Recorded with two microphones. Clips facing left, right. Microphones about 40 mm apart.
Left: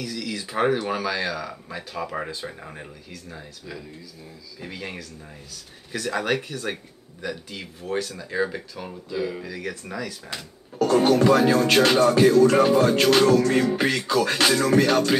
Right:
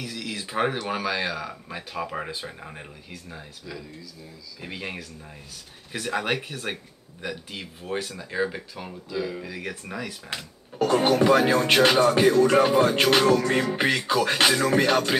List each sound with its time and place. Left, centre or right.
0.0 s speech: centre
4.6 s speech: centre